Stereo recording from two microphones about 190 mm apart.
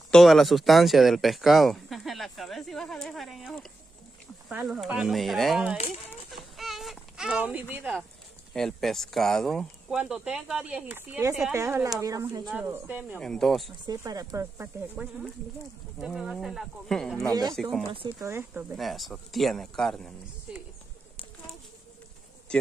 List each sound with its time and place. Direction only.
0.1 s speech: centre (ahead or behind)
6.0 s a sound: centre (ahead or behind)
7.7 s speech: 5° right (ahead or behind)
13.2 s speech: 5° left (ahead or behind)
13.8 s speech: 20° right (ahead or behind); by 17.3 s centre (ahead or behind)
17.3 s speech: 20° right (ahead or behind)
17.6 s speech: centre (ahead or behind)
18.2 s speech: 10° right (ahead or behind)